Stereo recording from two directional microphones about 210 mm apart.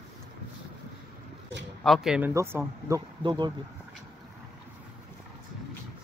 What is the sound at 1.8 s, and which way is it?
Speech, centre (ahead or behind).